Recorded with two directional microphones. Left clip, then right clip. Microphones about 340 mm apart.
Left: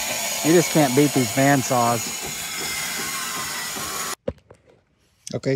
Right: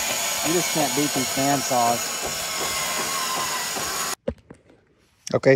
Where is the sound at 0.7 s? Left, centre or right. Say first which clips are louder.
Left 5 dB; right.